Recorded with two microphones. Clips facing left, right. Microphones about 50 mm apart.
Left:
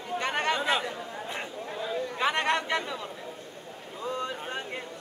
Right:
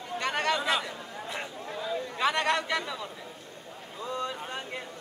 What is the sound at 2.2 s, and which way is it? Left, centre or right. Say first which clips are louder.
Speech: even; left.